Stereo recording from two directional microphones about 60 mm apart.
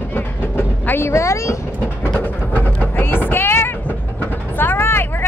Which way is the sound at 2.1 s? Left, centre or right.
Left.